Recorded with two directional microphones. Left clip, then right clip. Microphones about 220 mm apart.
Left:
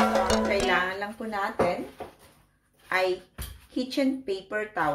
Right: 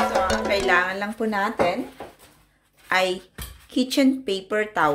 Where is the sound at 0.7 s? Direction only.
50° right (ahead or behind).